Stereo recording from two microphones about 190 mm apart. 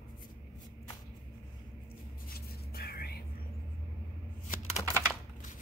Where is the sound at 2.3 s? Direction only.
55° left (ahead or behind).